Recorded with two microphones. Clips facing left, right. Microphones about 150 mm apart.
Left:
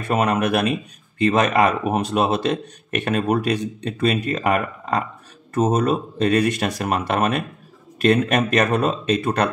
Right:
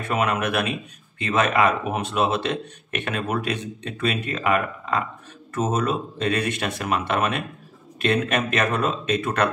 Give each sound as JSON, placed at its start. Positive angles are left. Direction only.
{"t": 0.1, "sound": "speech", "side_deg": 40}